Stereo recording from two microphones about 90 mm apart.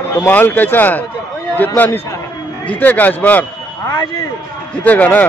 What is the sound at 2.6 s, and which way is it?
Speech, 15° left (ahead or behind).